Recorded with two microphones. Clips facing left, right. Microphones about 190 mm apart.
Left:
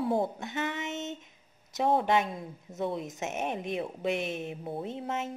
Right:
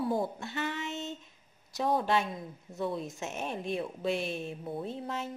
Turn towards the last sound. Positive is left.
turn(degrees=20)  # may be behind; listen again after turning